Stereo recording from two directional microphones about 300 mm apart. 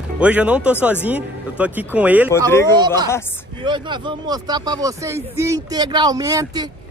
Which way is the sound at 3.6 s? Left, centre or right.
Centre.